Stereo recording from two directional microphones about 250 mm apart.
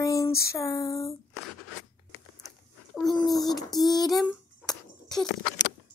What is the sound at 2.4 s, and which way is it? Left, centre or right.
Dog, centre.